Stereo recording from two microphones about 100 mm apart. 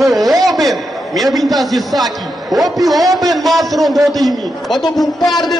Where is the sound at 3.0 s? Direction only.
40° right (ahead or behind).